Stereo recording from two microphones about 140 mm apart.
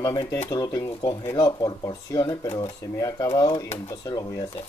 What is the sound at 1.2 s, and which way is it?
Speech, 25° left (ahead or behind).